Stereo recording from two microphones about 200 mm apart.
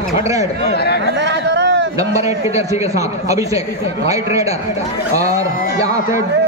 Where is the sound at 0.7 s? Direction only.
55° left (ahead or behind).